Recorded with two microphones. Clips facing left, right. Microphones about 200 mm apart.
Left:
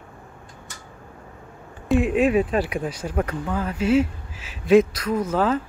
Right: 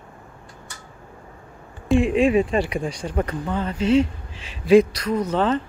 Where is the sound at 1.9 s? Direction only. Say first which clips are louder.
Right 1 dB; centre (ahead or behind).